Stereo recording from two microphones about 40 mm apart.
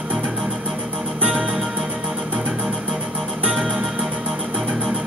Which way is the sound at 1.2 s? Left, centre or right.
Right.